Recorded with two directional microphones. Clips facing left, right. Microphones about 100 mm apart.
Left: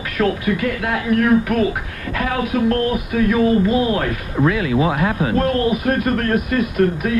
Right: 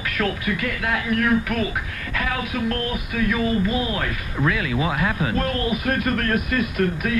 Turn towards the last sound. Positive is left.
turn(degrees=35)  # may be behind; listen again after turning